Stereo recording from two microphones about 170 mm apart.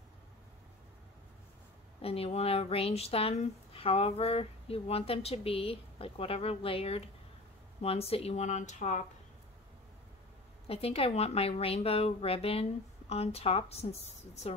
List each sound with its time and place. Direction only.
2.0 s speech: 35° left (ahead or behind)
10.7 s speech: 35° left (ahead or behind)